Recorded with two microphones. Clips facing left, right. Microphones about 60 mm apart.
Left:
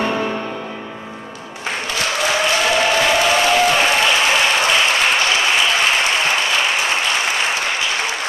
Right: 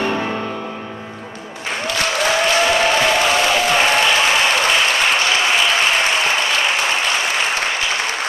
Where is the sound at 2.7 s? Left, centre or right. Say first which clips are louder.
Even; centre.